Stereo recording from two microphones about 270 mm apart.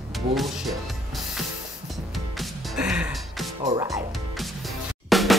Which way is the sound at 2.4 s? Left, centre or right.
Centre.